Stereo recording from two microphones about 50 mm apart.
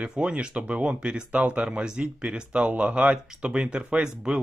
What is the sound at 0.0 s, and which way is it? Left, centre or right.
Speech, right.